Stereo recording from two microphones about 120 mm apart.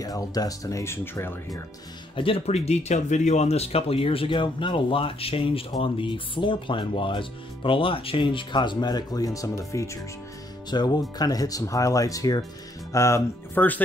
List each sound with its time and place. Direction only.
0.0 s speech: 30° left (ahead or behind)
2.1 s speech: 50° left (ahead or behind); by 13.2 s 25° left (ahead or behind)
13.6 s speech: 15° left (ahead or behind)